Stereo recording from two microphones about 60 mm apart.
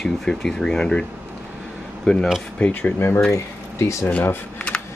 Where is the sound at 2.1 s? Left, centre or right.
Centre.